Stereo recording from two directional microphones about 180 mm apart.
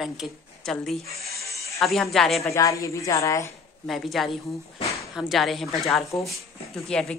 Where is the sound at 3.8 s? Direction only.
Centre (ahead or behind).